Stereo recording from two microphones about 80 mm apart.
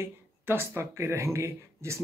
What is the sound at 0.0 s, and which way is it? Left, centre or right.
Speech, right.